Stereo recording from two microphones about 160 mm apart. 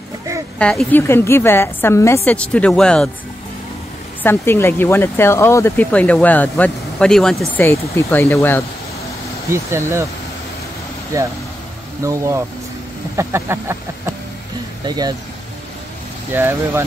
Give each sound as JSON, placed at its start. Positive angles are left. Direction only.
{"t": 0.6, "sound": "speech", "side_deg": 5}
{"t": 4.2, "sound": "speech", "side_deg": 15}
{"t": 7.6, "sound": "speech", "side_deg": 15}
{"t": 9.5, "sound": "speech", "side_deg": -15}
{"t": 12.0, "sound": "speech", "side_deg": -20}
{"t": 16.3, "sound": "speech", "side_deg": -15}